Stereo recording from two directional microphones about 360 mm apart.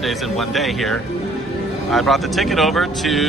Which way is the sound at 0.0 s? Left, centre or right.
Centre.